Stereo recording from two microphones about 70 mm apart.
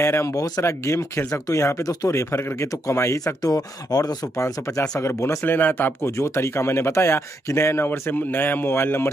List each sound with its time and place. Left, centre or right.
0.0 s speech: left
3.5 s speech: left
5.0 s speech: left
5.5 s speech: left
6.0 s speech: left